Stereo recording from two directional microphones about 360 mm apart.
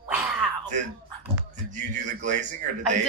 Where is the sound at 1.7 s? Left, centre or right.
Right.